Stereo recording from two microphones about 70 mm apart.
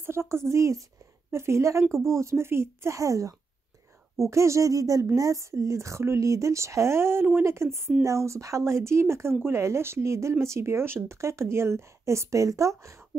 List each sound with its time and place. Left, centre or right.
0.0 s speech: right